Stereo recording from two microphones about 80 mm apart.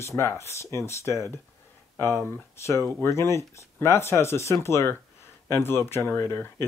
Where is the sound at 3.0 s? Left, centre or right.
Left.